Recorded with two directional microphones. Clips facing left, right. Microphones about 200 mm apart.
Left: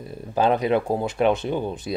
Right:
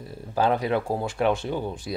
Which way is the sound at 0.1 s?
20° left (ahead or behind).